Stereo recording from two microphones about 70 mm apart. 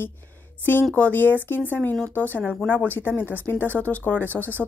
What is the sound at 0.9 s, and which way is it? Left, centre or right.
Speech, left.